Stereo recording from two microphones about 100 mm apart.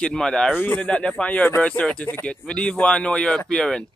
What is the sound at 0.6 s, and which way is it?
Speech, 15° left (ahead or behind).